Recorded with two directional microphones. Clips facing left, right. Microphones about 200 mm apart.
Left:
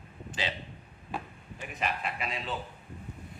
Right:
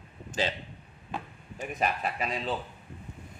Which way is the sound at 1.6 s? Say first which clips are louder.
Right 4 dB; 45° right (ahead or behind).